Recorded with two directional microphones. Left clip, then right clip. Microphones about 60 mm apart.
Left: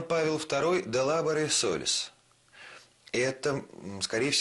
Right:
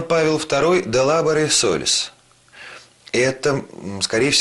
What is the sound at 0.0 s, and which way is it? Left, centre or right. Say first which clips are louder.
Speech: right 10 dB; left.